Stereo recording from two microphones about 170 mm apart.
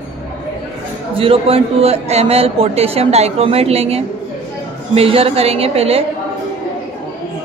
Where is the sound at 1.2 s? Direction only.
35° right (ahead or behind).